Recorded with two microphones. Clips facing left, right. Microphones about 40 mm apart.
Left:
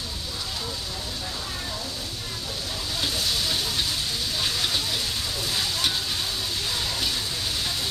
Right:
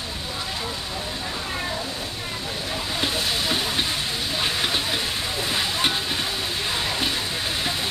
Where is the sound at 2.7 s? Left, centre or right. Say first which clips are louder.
Right 4 dB; right.